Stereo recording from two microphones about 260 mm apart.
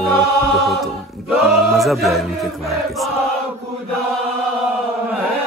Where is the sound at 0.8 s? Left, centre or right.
Centre.